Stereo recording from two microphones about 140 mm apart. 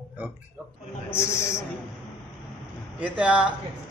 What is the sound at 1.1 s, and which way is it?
Speech, 20° left (ahead or behind).